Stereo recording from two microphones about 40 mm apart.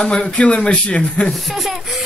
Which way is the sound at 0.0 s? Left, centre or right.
Left.